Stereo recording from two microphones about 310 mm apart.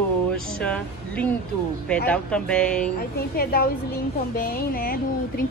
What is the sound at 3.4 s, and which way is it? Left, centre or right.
A woman's voice, left.